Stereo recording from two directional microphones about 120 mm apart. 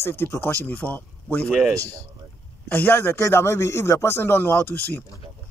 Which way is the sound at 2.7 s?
15° left (ahead or behind).